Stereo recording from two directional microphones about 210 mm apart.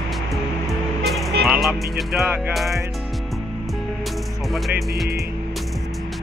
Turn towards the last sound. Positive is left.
turn(degrees=0)  # may be behind; listen again after turning